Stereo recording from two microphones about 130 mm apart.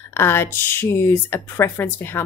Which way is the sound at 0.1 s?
20° left (ahead or behind).